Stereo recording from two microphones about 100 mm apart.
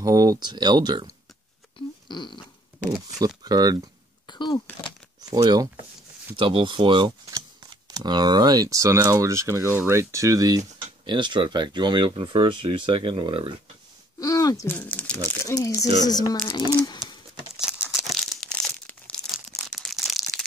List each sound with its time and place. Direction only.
0.0 s speech: 35° right (ahead or behind)
2.0 s fart: 50° left (ahead or behind)
2.9 s speech: 35° right (ahead or behind)
4.3 s speech: 45° left (ahead or behind)
5.2 s speech: 40° right (ahead or behind)
6.3 s speech: 60° right (ahead or behind)
7.9 s speech: 45° right (ahead or behind)
11.1 s speech: 50° right (ahead or behind)
14.2 s speech: 35° left (ahead or behind)
14.7 s speech: 20° left (ahead or behind)
15.4 s speech: 30° left (ahead or behind)
17.6 s crumpling: 5° right (ahead or behind); by 19.2 s 10° left (ahead or behind)
19.3 s a sound: centre (ahead or behind)